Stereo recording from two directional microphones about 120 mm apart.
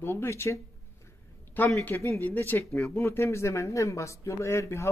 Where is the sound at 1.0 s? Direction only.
15° left (ahead or behind).